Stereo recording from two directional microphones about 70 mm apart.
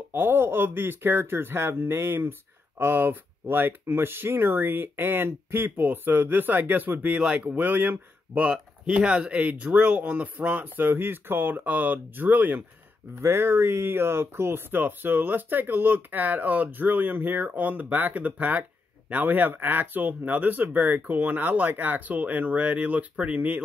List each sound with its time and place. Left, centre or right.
0.1 s speech: right
8.5 s speech: centre